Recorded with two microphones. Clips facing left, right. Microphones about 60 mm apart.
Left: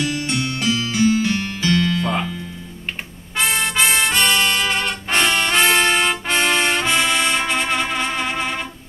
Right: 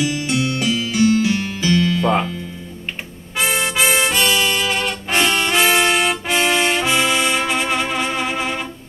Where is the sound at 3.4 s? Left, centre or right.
Centre.